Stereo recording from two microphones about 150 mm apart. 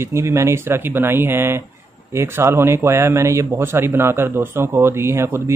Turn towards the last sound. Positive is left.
turn(degrees=-15)  # may be behind; listen again after turning